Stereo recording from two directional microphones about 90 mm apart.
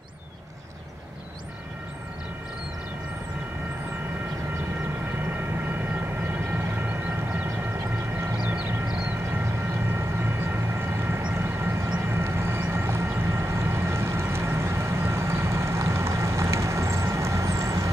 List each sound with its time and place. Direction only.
8.5 s vehicle: 10° right (ahead or behind)
9.9 s vehicle: 25° right (ahead or behind)